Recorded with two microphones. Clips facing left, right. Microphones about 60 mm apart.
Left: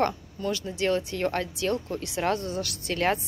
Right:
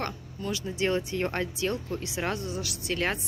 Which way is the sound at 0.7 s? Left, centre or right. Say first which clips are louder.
Even; right.